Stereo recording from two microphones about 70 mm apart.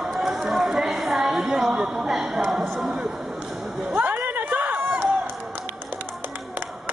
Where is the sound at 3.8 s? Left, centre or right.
Right.